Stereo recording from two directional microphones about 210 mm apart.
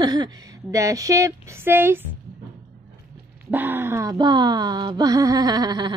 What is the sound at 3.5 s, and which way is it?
Speech, 10° right (ahead or behind).